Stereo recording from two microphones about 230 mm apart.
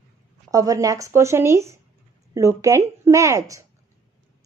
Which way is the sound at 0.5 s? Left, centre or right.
Centre.